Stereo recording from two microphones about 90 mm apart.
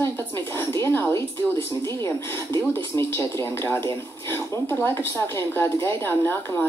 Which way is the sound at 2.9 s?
30° left (ahead or behind).